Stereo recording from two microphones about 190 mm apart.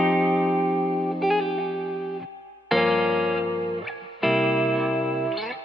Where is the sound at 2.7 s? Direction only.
Centre (ahead or behind).